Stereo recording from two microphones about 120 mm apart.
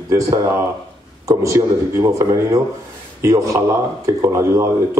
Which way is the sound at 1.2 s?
25° right (ahead or behind).